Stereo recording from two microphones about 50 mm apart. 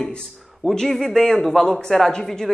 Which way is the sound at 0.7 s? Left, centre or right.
Centre.